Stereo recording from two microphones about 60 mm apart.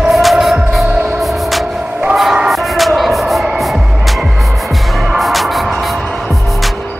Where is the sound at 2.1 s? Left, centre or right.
Centre.